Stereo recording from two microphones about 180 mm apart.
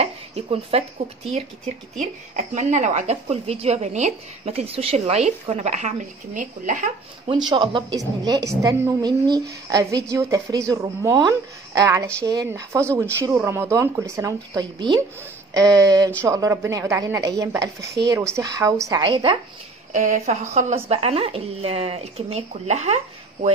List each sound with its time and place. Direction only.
0.0 s speech: 35° right (ahead or behind)
7.4 s a woman's voice: 25° right (ahead or behind)
19.9 s speech: 40° right (ahead or behind)